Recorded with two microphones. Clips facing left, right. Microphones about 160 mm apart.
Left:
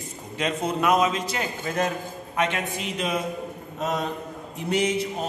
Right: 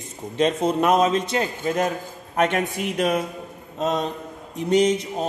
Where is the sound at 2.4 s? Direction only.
45° right (ahead or behind).